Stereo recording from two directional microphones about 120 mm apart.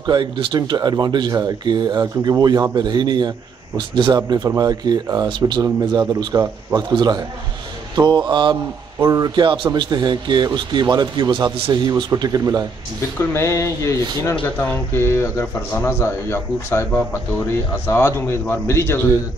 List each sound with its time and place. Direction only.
0.0 s speech: 40° right (ahead or behind)
13.3 s speech: 25° left (ahead or behind)